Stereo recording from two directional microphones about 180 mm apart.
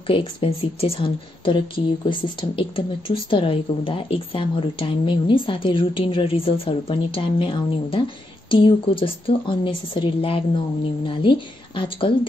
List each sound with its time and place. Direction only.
0.0 s a woman's voice: 30° left (ahead or behind)